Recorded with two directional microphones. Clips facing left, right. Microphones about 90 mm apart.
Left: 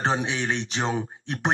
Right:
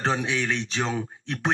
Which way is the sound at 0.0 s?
25° left (ahead or behind).